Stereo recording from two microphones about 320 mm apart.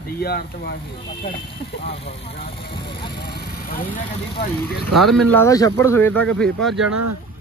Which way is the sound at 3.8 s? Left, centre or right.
Left.